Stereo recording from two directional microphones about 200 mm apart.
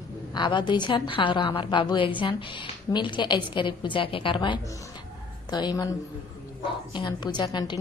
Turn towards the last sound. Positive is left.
turn(degrees=20)  # may be behind; listen again after turning